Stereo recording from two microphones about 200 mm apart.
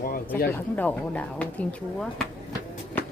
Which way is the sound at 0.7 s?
10° left (ahead or behind).